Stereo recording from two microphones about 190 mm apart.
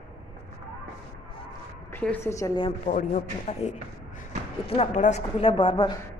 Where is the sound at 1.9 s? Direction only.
10° left (ahead or behind).